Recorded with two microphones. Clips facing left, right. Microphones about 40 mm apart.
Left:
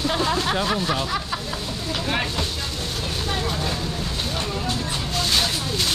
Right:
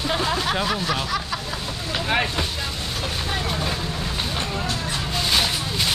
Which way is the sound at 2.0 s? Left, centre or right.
Centre.